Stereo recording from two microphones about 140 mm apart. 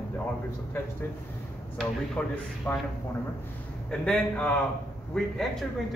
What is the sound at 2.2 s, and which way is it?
Speech, 10° left (ahead or behind).